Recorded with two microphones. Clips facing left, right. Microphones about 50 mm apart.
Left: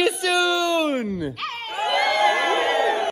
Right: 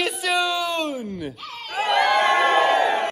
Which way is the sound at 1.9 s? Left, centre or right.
Centre.